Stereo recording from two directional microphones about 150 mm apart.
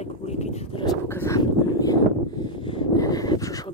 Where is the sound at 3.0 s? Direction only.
25° left (ahead or behind).